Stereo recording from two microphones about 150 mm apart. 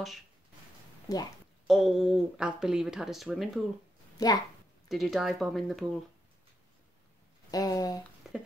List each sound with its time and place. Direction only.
1.1 s speech: 25° left (ahead or behind)
1.7 s speech: 5° right (ahead or behind)
4.2 s speech: 25° left (ahead or behind)
4.8 s speech: centre (ahead or behind)
7.5 s speech: 25° left (ahead or behind)
8.2 s a sound: 5° right (ahead or behind)